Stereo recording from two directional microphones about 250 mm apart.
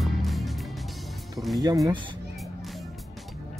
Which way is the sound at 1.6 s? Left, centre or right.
Centre.